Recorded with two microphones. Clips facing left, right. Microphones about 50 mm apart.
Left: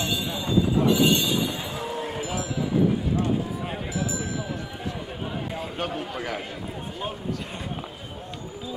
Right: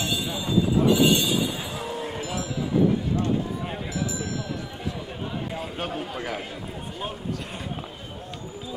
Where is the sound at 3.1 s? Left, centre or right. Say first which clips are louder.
Even; centre.